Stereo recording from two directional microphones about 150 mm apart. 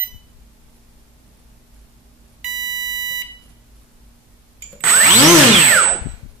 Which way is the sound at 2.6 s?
25° right (ahead or behind).